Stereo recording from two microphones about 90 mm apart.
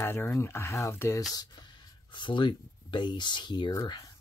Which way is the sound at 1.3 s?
50° left (ahead or behind).